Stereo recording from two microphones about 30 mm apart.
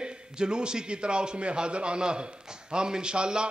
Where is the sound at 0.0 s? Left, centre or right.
Right.